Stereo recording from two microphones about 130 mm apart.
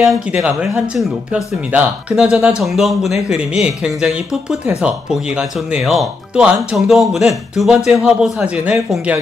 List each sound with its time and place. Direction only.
0.0 s a man's voice: centre (ahead or behind)